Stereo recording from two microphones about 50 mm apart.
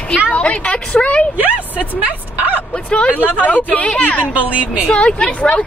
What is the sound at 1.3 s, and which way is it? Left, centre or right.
Speech, right.